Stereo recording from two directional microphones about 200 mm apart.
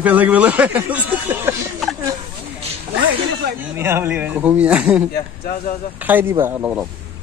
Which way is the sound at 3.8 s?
15° right (ahead or behind).